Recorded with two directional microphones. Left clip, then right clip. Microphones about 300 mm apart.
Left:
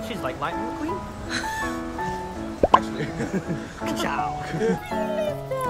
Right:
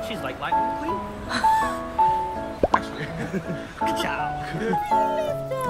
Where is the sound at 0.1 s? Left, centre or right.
Left.